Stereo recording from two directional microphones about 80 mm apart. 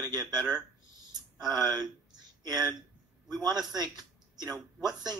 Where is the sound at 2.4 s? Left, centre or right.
Right.